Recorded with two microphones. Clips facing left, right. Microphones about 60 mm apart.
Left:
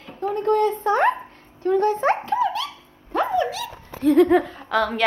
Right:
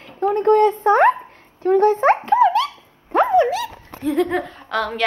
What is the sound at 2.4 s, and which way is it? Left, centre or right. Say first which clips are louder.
Dog: right 8 dB; right.